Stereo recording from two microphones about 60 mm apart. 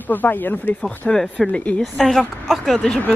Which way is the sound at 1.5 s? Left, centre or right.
Centre.